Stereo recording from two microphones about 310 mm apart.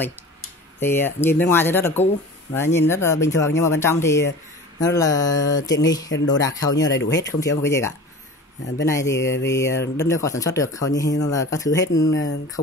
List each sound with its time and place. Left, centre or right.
0.7 s speech: centre
7.0 s speech: left
7.2 s speech: centre
12.1 s speech: left